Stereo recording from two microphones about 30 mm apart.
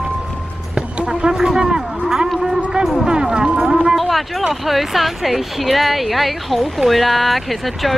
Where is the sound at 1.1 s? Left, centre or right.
Right; by 2.6 s centre.